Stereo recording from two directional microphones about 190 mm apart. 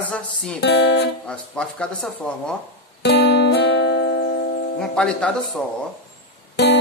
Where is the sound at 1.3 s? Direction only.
5° left (ahead or behind).